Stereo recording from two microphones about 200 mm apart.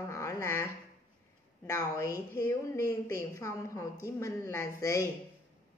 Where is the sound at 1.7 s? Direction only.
15° left (ahead or behind).